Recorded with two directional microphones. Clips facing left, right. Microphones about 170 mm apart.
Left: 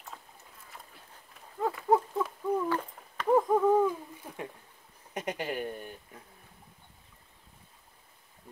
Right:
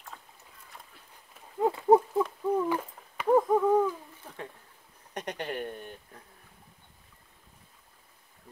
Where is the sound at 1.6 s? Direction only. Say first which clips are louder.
Right 5 dB; 25° right (ahead or behind).